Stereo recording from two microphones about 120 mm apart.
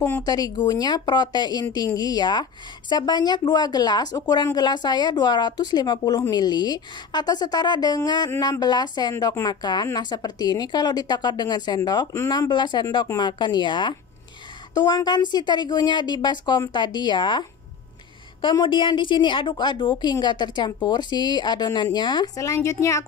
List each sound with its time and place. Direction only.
0.2 s speech: 30° left (ahead or behind)
9.1 s speech: 25° left (ahead or behind)